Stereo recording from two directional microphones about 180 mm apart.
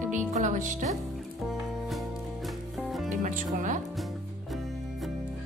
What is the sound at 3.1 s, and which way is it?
Music, 45° right (ahead or behind).